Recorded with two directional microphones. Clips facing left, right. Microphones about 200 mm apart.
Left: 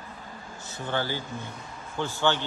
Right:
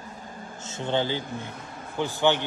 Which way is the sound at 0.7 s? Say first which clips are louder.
Right 4 dB; 20° right (ahead or behind).